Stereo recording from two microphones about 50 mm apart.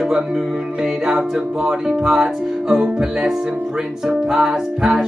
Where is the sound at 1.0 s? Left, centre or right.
Centre.